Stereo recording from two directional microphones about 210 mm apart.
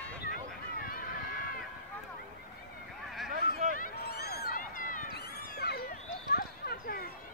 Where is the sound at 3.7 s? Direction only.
45° left (ahead or behind).